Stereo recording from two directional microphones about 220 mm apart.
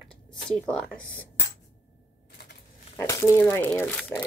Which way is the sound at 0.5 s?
5° left (ahead or behind).